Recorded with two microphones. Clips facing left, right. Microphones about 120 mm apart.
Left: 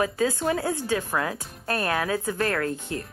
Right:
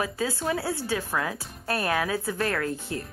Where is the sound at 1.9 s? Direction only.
40° left (ahead or behind).